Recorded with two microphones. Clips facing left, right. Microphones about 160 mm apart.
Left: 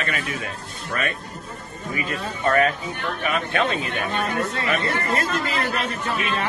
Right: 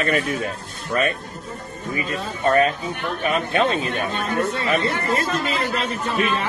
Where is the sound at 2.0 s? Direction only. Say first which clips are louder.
Right 1 dB; 30° right (ahead or behind).